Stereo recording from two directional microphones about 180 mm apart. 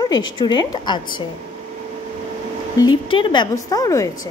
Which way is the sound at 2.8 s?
25° left (ahead or behind).